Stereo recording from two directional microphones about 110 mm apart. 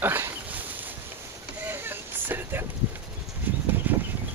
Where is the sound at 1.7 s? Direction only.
20° right (ahead or behind).